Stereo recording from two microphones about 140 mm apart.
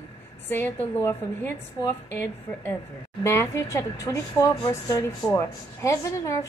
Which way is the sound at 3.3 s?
20° left (ahead or behind).